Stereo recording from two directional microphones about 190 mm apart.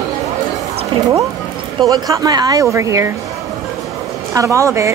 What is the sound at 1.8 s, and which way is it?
A woman's voice, 20° right (ahead or behind).